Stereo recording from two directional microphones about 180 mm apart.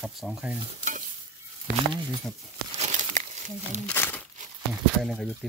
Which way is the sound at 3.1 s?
45° right (ahead or behind).